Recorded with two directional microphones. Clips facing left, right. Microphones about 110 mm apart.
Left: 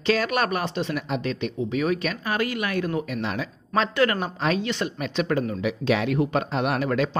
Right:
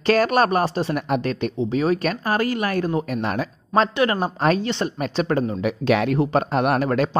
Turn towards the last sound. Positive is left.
turn(degrees=-45)  # may be behind; listen again after turning